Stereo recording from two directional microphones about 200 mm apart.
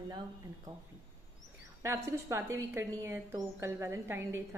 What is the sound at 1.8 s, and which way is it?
A woman's voice, 15° right (ahead or behind).